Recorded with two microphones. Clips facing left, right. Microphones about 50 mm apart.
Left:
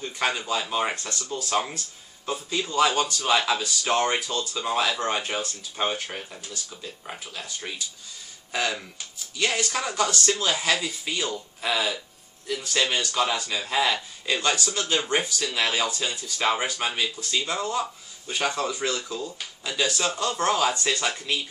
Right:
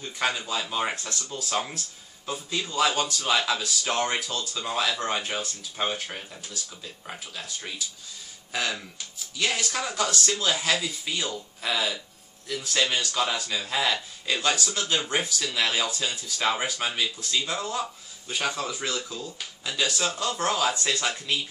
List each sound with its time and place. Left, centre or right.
0.0 s speech: centre